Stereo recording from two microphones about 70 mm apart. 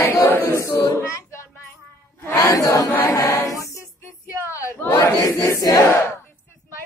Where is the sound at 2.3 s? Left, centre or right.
Left.